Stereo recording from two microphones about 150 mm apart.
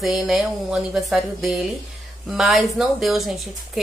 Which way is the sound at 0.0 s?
Centre (ahead or behind).